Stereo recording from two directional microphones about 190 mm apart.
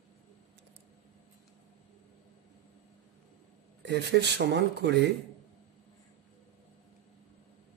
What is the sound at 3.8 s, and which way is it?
Speech, 60° right (ahead or behind).